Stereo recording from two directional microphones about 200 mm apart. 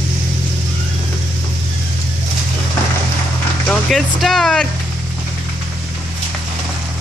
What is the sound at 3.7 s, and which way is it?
Speech, centre (ahead or behind).